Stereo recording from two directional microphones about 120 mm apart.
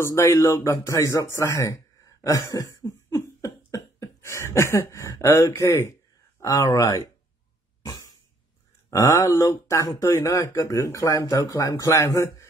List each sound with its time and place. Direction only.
0.0 s speech: 25° left (ahead or behind)
7.8 s cough: 25° left (ahead or behind)
8.9 s speech: 25° left (ahead or behind)